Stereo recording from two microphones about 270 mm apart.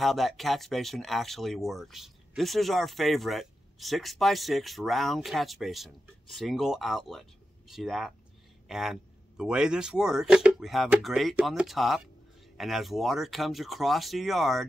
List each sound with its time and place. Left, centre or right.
0.0 s speech: centre